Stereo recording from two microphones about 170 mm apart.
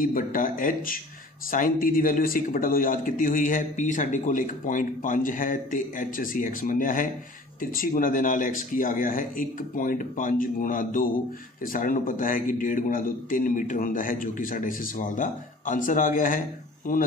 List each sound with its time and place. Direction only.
0.0 s speech: 55° left (ahead or behind)